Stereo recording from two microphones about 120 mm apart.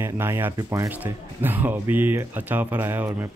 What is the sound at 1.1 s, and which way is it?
Speech, 15° right (ahead or behind).